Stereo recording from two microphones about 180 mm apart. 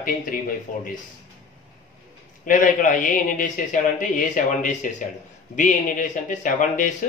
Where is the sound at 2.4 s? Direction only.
45° left (ahead or behind).